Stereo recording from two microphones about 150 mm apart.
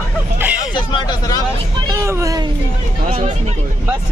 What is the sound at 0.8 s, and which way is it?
Speech, 30° left (ahead or behind).